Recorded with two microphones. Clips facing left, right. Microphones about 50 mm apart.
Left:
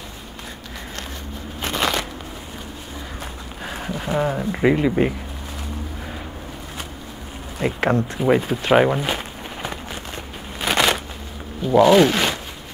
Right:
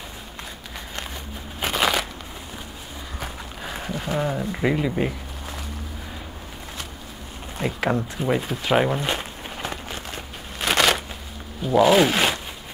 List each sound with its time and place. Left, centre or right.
1.6 s a sound: centre
3.6 s speech: centre
7.5 s insect: centre
8.5 s walk: centre
11.6 s speech: centre